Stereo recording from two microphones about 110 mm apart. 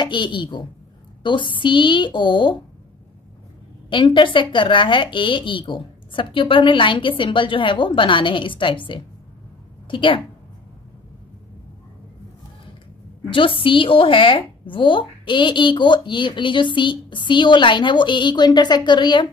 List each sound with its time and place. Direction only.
0.0 s a woman's voice: 45° left (ahead or behind)
3.9 s a woman's voice: 50° left (ahead or behind)
13.3 s a woman's voice: 50° left (ahead or behind)